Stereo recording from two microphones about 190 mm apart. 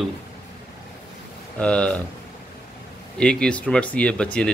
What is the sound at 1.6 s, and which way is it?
Speech, 5° left (ahead or behind).